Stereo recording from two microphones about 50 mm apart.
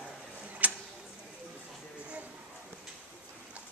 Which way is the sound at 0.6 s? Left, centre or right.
Right.